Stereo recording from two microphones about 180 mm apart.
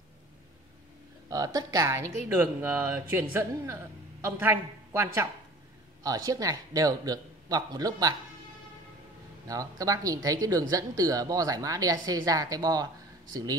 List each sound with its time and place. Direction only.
1.3 s speech: 20° right (ahead or behind)
9.5 s speech: 20° right (ahead or behind)